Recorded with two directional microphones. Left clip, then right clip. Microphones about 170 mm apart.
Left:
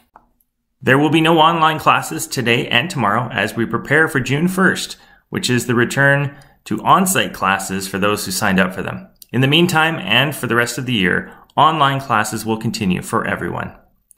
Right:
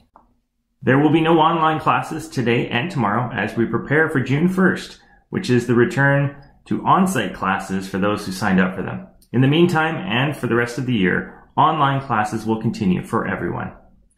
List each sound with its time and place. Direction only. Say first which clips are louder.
0.8 s speech: left 3 dB; 15° left (ahead or behind)